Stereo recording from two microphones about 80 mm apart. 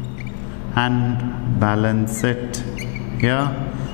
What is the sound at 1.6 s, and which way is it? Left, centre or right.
A man's voice, centre.